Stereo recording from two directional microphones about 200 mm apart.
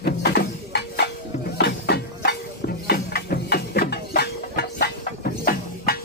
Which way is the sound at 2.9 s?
50° left (ahead or behind).